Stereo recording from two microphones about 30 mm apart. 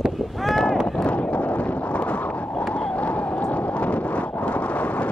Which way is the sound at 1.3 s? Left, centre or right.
Left.